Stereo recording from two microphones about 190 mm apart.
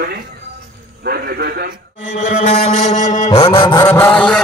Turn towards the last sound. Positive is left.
turn(degrees=5)  # may be behind; listen again after turning